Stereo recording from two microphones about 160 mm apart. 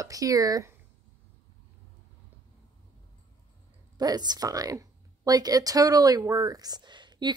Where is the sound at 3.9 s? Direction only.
25° right (ahead or behind).